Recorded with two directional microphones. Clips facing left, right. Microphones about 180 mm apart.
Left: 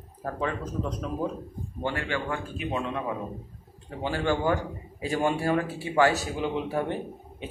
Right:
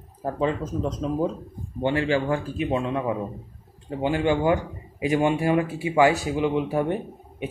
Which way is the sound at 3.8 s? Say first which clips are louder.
Right 5 dB; 15° right (ahead or behind).